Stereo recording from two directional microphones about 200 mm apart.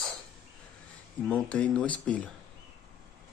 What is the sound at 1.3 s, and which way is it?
Speech, 5° left (ahead or behind).